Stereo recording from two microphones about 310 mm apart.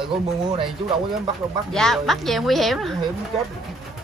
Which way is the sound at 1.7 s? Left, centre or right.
Centre.